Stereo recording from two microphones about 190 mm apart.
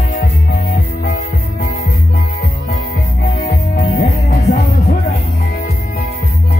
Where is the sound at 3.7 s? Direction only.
55° left (ahead or behind).